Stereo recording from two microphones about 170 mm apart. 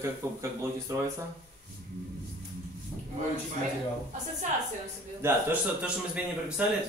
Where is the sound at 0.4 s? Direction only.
15° right (ahead or behind).